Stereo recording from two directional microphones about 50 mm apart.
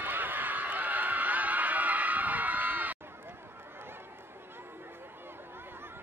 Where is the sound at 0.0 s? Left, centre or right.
Right.